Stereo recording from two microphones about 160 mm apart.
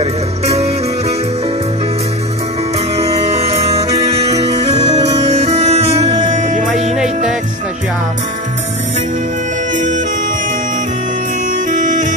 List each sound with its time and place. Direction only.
0.0 s music: 40° right (ahead or behind)
3.0 s music: 40° right (ahead or behind)
7.0 s music: 5° right (ahead or behind)
11.7 s bagpipes: 50° right (ahead or behind)